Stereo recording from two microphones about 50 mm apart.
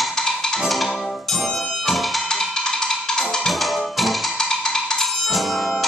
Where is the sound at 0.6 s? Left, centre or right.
Centre.